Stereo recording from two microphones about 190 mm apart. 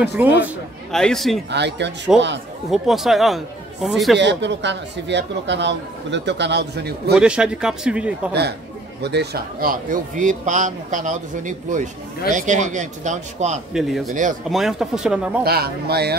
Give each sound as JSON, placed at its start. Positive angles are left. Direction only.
{"t": 0.0, "sound": "a man's voice", "side_deg": -5}
{"t": 0.9, "sound": "speech", "side_deg": 0}
{"t": 1.5, "sound": "a man's voice", "side_deg": -65}
{"t": 2.7, "sound": "speech", "side_deg": 0}
{"t": 4.2, "sound": "a man's voice", "side_deg": -70}
{"t": 7.2, "sound": "speech", "side_deg": -5}
{"t": 8.3, "sound": "a man's voice", "side_deg": -60}
{"t": 13.7, "sound": "speech", "side_deg": 0}
{"t": 15.4, "sound": "speech", "side_deg": -55}